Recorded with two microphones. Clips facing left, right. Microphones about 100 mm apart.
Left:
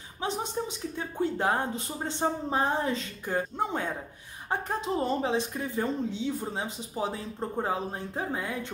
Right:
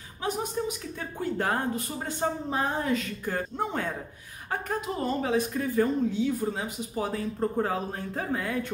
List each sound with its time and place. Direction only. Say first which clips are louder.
0.2 s speech: right 2 dB; 25° left (ahead or behind)
3.3 s speech: left 2 dB; 15° left (ahead or behind)